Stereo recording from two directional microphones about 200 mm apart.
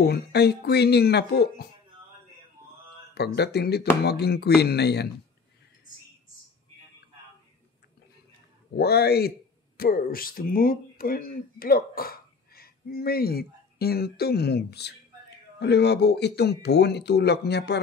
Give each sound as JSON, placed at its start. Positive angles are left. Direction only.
{"t": 0.0, "sound": "speech", "side_deg": 55}
{"t": 3.2, "sound": "speech", "side_deg": 55}
{"t": 8.7, "sound": "speech", "side_deg": 50}